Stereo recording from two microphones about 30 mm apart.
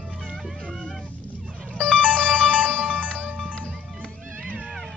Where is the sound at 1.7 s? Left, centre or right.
Left.